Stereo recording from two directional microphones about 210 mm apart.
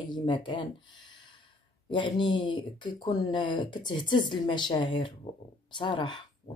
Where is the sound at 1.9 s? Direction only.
20° left (ahead or behind).